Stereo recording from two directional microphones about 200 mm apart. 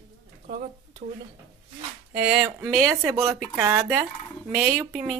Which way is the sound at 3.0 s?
15° right (ahead or behind).